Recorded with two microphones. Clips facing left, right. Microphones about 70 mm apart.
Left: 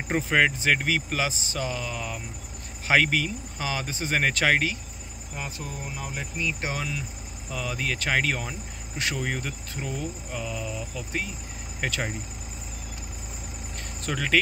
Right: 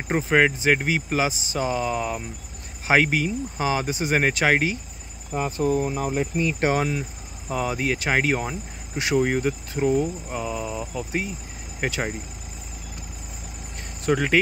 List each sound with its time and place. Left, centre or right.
0.1 s speech: centre; by 2.2 s right
2.9 s cricket: centre
5.3 s speech: right
8.0 s cricket: right
11.8 s speech: centre
14.0 s cricket: centre